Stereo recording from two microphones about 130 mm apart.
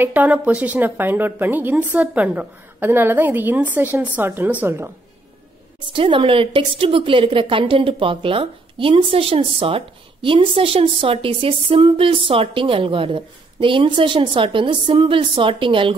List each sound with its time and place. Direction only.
0.0 s a woman's voice: 10° right (ahead or behind)
5.9 s a woman's voice: 40° right (ahead or behind)